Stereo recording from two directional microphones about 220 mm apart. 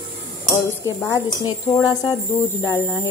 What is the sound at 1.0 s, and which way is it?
Speech, 15° left (ahead or behind).